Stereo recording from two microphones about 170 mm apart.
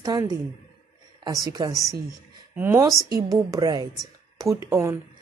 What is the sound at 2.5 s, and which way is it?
A woman's voice, 15° right (ahead or behind).